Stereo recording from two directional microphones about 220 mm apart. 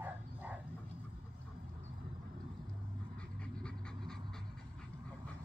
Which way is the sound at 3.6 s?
Centre (ahead or behind).